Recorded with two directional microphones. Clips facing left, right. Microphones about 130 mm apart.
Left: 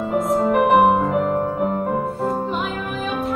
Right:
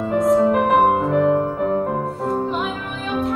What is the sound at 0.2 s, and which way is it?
Music, centre (ahead or behind).